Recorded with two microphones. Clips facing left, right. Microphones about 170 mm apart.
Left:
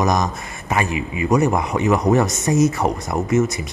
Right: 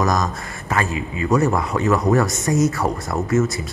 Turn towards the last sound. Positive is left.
turn(degrees=20)  # may be behind; listen again after turning